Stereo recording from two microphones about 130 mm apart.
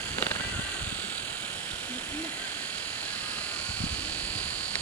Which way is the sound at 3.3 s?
10° left (ahead or behind).